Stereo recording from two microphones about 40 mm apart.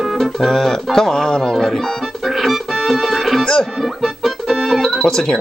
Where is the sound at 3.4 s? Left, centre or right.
Centre.